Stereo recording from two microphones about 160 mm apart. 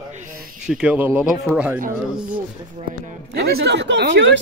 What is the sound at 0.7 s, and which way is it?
Speech, 10° right (ahead or behind).